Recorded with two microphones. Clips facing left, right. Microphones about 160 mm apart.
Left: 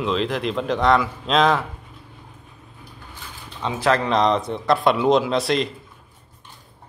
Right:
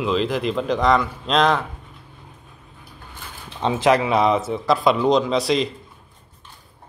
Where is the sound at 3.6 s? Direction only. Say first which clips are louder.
Right 5 dB; 30° right (ahead or behind).